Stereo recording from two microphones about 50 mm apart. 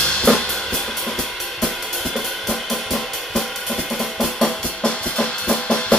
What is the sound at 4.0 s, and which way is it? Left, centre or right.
Drum, centre.